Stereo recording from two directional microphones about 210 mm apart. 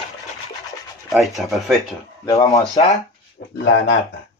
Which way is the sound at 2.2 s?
15° left (ahead or behind).